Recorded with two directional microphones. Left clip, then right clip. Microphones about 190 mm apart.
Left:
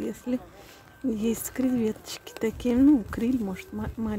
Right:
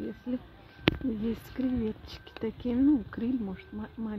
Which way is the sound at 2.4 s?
20° left (ahead or behind).